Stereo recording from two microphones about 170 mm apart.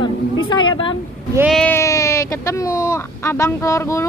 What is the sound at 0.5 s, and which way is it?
Speech, 25° left (ahead or behind).